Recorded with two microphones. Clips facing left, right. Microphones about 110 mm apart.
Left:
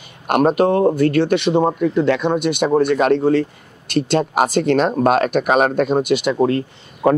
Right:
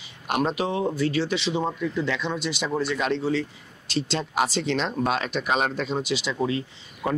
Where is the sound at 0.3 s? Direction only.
55° left (ahead or behind).